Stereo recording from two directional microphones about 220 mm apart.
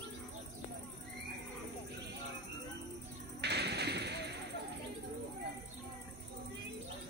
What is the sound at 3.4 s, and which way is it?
Music, 50° right (ahead or behind).